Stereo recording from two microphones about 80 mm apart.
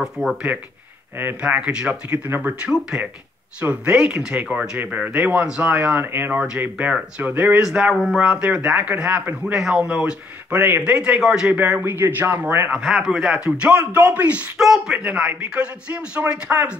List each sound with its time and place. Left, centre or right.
0.0 s speech: centre; by 2.5 s right
2.6 s a man's voice: centre
5.9 s speech: right
7.6 s a man's voice: centre
8.5 s a man's voice: centre
12.7 s a man's voice: centre
14.6 s a man's voice: centre; by 16.7 s right